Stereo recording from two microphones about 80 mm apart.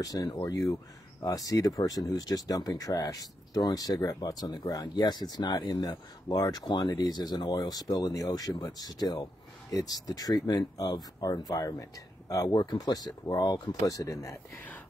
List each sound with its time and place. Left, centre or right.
0.0 s speech: left
12.5 s speech: left